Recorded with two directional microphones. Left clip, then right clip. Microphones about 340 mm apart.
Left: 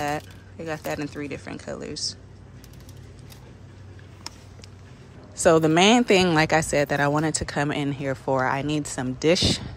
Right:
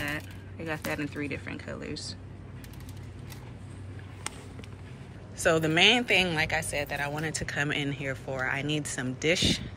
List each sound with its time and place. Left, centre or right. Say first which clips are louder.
0.0 s speech: left 6 dB; centre
5.4 s speech: left 5 dB; centre